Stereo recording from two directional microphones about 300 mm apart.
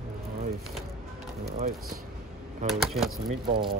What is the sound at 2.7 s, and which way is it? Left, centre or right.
Speech, centre.